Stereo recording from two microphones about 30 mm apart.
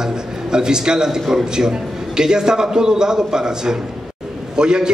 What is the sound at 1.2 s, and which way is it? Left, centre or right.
A man's voice, centre.